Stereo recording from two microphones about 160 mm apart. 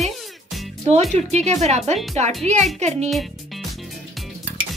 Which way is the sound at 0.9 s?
45° right (ahead or behind).